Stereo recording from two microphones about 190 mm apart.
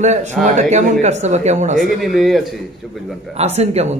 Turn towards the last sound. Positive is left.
turn(degrees=-35)  # may be behind; listen again after turning